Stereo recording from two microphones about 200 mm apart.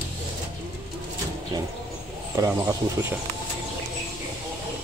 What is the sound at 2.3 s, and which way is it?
Speech, 15° right (ahead or behind).